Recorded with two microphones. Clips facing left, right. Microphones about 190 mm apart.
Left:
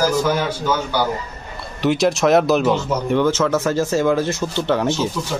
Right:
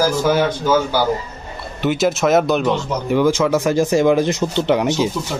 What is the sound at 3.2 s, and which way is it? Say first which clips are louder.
Speech: right 4 dB; 10° right (ahead or behind).